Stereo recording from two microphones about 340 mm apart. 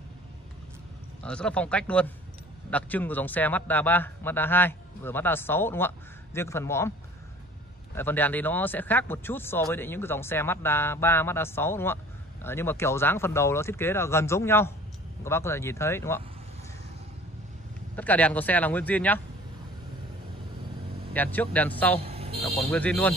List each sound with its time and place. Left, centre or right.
1.2 s a man's voice: centre
7.9 s speech: centre
17.9 s a man's voice: centre
21.1 s a man's voice: centre
22.0 s vehicle: centre
22.7 s a man's voice: centre